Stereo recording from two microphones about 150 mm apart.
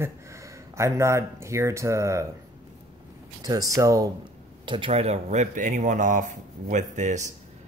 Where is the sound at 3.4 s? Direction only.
25° right (ahead or behind).